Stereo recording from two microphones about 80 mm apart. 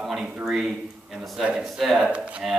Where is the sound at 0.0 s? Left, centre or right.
Centre.